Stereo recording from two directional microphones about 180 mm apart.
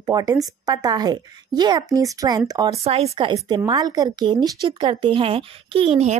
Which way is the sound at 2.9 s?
35° right (ahead or behind).